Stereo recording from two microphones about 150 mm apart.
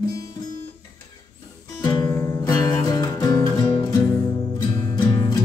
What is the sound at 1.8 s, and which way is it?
Music, 30° left (ahead or behind).